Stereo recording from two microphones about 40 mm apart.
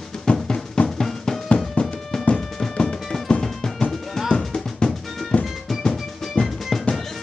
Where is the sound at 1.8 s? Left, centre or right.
Left.